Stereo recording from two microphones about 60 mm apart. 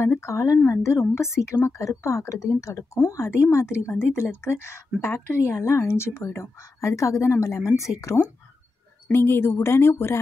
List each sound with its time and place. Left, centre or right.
0.2 s speech: left
9.0 s speech: left